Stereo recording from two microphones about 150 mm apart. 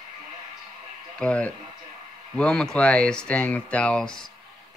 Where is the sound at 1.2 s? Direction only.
10° left (ahead or behind).